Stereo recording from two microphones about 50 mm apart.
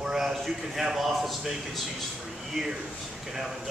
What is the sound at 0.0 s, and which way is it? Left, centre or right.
A man's voice, centre.